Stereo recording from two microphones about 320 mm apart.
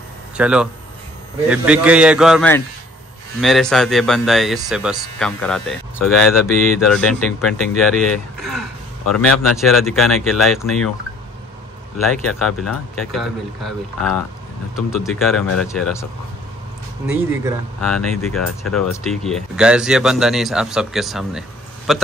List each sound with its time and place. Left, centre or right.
0.4 s speech: centre
12.3 s speech: centre
17.0 s speech: centre